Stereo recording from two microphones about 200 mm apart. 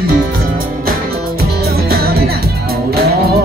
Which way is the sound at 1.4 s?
50° right (ahead or behind).